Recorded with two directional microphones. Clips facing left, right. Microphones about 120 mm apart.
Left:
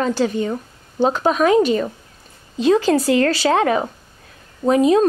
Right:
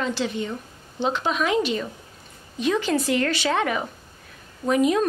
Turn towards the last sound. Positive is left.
turn(degrees=30)  # may be behind; listen again after turning